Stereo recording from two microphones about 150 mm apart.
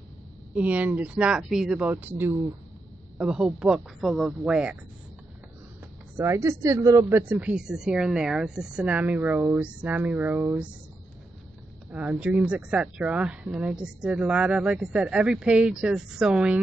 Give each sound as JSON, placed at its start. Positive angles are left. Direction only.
{"t": 0.6, "sound": "speech", "side_deg": -10}
{"t": 6.1, "sound": "speech", "side_deg": -20}
{"t": 11.9, "sound": "speech", "side_deg": -10}